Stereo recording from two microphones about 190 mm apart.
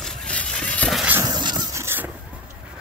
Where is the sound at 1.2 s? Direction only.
20° right (ahead or behind).